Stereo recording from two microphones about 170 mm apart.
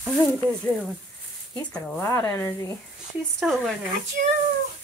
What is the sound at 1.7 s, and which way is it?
Speech, 15° left (ahead or behind).